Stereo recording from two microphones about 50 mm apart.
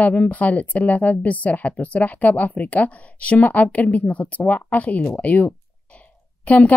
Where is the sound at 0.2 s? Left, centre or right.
Left.